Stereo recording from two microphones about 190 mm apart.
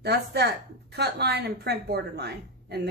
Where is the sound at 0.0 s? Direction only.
60° right (ahead or behind).